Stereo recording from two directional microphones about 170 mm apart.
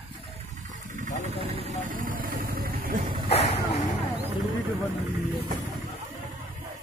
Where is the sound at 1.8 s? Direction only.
50° right (ahead or behind).